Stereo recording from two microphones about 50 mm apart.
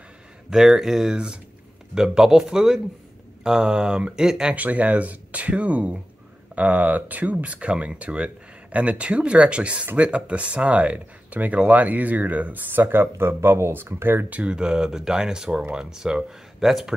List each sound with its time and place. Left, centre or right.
0.5 s speech: centre
4.6 s speech: right
14.3 s speech: right; by 16.9 s centre